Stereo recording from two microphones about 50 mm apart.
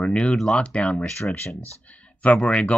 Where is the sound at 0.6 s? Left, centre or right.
Left.